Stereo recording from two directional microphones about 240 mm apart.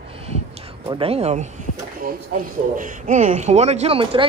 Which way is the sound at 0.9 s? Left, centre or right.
Right.